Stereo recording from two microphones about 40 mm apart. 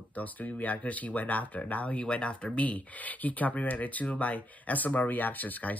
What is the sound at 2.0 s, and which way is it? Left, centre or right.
Speech, left.